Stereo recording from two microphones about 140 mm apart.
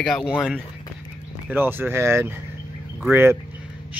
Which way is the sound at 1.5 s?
15° right (ahead or behind).